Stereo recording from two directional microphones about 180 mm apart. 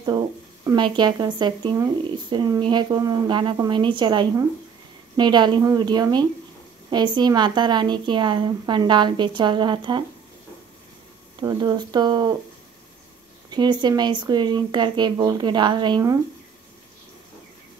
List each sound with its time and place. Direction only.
0.7 s a woman's voice: 25° right (ahead or behind)
11.4 s a woman's voice: 25° right (ahead or behind)
13.5 s a woman's voice: 25° right (ahead or behind)